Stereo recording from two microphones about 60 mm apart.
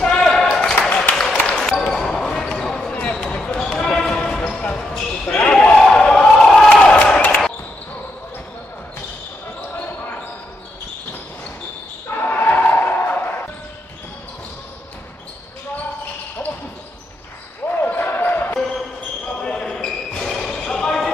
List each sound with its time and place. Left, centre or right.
0.0 s basketball bounce: centre
5.8 s a sound: centre
7.2 s basketball bounce: left
12.2 s basketball bounce: left
17.6 s basketball bounce: left
19.4 s basketball bounce: centre